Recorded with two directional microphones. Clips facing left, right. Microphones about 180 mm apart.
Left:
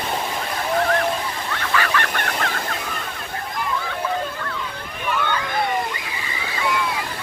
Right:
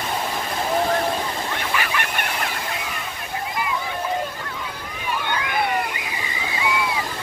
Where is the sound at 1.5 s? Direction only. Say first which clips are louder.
Left 2 dB; 15° right (ahead or behind).